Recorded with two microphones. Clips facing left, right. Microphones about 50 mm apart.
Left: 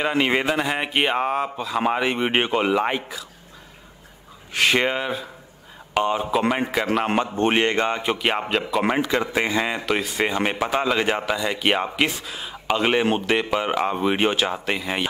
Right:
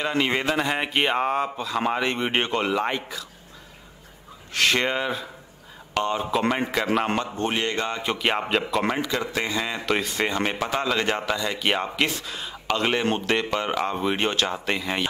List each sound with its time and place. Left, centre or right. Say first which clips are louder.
0.1 s speech: left 2 dB; centre
4.6 s a man's voice: left 2 dB; centre
7.2 s speech: left 6 dB; left
8.0 s a man's voice: left 2 dB; centre
9.0 s speech: left 4 dB; left
9.8 s speech: left 2 dB; centre